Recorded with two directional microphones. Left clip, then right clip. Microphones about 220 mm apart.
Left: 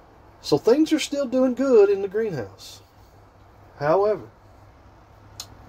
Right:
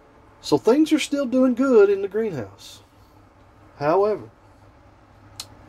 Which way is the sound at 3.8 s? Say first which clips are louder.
Even; 25° right (ahead or behind).